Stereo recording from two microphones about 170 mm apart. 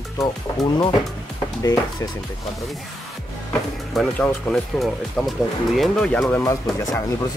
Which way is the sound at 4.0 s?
Centre (ahead or behind).